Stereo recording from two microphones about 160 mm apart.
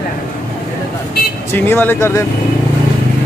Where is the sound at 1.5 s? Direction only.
15° left (ahead or behind).